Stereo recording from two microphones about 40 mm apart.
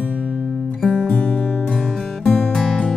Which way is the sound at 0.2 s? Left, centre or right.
Right.